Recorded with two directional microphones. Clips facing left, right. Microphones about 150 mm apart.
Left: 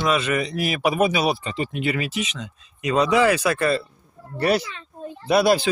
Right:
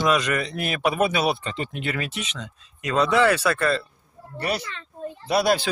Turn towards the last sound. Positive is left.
turn(degrees=5)  # may be behind; listen again after turning